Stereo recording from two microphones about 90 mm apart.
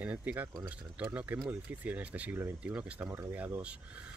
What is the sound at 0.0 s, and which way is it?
Speech, 15° right (ahead or behind).